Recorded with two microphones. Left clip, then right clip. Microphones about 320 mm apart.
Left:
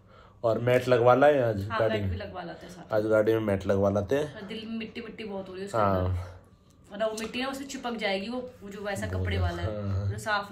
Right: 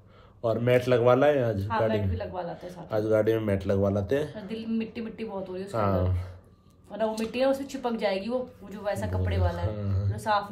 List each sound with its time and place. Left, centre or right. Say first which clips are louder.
0.4 s speech: even; centre
1.7 s speech: right 1 dB; right
2.6 s speech: left 3 dB; centre
4.5 s speech: right 4 dB; right
5.7 s speech: left 2 dB; centre
6.9 s speech: right 2 dB; right
9.7 s speech: left 1 dB; centre
10.1 s speech: right 3 dB; right